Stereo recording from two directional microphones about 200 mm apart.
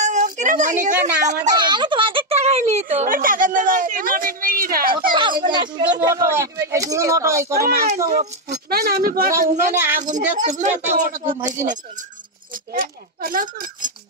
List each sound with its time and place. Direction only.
0.0 s a woman's voice: 35° right (ahead or behind)
1.5 s speech: 20° right (ahead or behind); by 5.1 s 45° right (ahead or behind)
5.4 s speech: 25° right (ahead or behind)
7.5 s speech: 50° right (ahead or behind)
12.7 s speech: 45° right (ahead or behind)